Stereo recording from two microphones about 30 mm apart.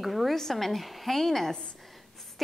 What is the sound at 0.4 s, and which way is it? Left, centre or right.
A woman's voice, centre.